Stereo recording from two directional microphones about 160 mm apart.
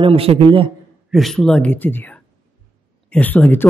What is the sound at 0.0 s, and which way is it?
Speech, 35° right (ahead or behind).